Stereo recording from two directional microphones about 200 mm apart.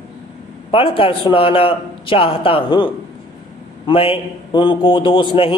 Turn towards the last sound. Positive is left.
turn(degrees=25)  # may be behind; listen again after turning